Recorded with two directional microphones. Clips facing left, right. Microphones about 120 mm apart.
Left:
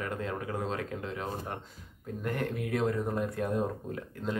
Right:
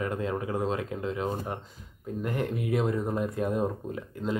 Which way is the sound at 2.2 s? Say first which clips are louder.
Right 2 dB; 10° right (ahead or behind).